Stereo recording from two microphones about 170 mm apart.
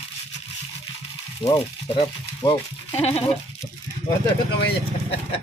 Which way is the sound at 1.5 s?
30° left (ahead or behind).